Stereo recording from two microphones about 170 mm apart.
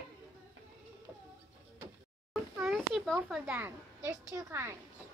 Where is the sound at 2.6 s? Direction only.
Centre (ahead or behind); by 4.7 s 15° right (ahead or behind).